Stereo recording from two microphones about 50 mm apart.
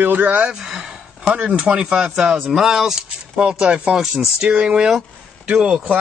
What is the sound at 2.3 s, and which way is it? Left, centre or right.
Speech, centre.